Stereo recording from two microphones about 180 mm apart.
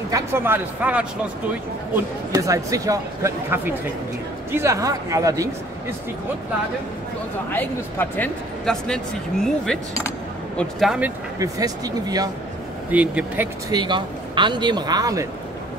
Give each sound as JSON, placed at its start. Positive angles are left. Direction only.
{"t": 0.1, "sound": "speech", "side_deg": -10}
{"t": 2.3, "sound": "speech", "side_deg": -20}
{"t": 7.5, "sound": "speech", "side_deg": 10}
{"t": 11.3, "sound": "speech", "side_deg": -20}
{"t": 12.9, "sound": "speech", "side_deg": -10}
{"t": 13.7, "sound": "speech", "side_deg": -25}